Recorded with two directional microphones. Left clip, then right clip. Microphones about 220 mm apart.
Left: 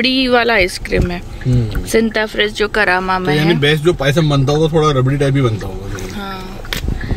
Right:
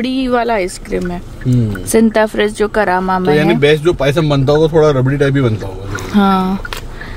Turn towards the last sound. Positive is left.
turn(degrees=-45)  # may be behind; listen again after turning